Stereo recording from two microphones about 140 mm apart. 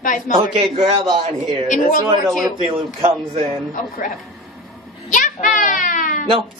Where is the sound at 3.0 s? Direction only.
45° right (ahead or behind).